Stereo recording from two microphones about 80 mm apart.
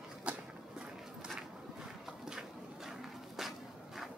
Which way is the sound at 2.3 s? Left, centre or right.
Centre.